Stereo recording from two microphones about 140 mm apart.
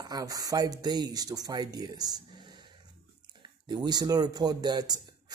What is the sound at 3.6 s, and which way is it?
Speech, 30° right (ahead or behind).